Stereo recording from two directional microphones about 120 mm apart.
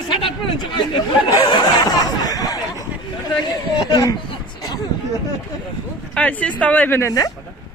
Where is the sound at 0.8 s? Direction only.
40° left (ahead or behind).